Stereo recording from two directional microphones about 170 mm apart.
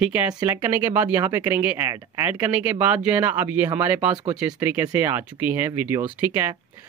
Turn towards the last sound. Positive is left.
turn(degrees=-15)  # may be behind; listen again after turning